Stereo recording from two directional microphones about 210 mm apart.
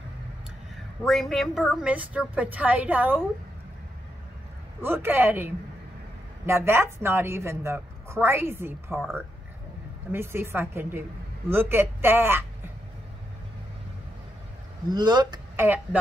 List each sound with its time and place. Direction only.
1.0 s a woman's voice: centre (ahead or behind)
4.8 s a woman's voice: 10° right (ahead or behind)
10.1 s a woman's voice: 10° right (ahead or behind)
14.9 s speech: 20° right (ahead or behind)